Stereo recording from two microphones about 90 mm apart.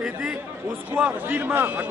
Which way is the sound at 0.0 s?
10° right (ahead or behind).